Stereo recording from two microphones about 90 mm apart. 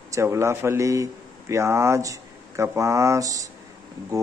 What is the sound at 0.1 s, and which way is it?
A man's voice, 30° right (ahead or behind).